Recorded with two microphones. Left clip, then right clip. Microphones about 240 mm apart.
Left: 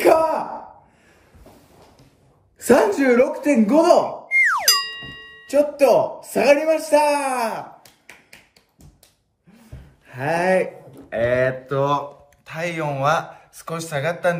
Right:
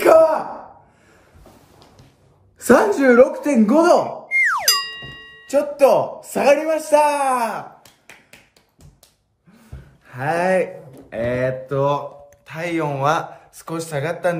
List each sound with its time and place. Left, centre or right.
0.0 s gasp: centre
2.6 s speech: centre
4.3 s boing: centre
6.9 s speech: centre
10.0 s speech: centre